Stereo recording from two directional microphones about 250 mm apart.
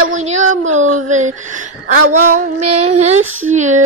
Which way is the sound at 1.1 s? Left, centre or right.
Right.